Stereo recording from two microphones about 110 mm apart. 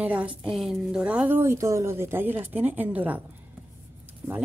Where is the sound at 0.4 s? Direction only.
Centre (ahead or behind).